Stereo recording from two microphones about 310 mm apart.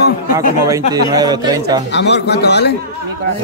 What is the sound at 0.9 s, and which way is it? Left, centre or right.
Speech, centre.